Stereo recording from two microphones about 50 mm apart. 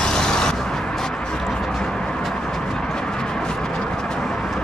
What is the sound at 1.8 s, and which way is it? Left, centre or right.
Vehicle, centre.